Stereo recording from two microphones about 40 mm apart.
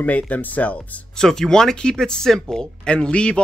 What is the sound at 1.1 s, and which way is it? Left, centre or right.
Speech, centre.